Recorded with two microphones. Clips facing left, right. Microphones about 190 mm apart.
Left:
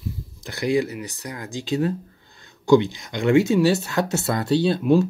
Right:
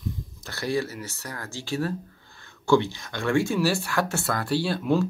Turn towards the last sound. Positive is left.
turn(degrees=20)  # may be behind; listen again after turning